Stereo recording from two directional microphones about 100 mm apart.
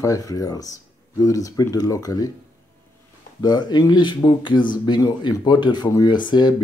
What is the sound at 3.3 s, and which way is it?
Speech, 45° left (ahead or behind).